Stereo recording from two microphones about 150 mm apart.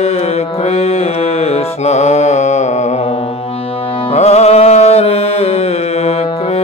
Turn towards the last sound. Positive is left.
turn(degrees=45)  # may be behind; listen again after turning